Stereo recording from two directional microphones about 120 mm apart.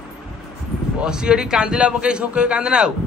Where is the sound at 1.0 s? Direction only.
5° right (ahead or behind).